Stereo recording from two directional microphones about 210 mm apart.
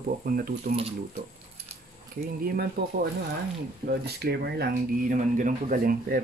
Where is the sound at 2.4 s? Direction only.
45° right (ahead or behind).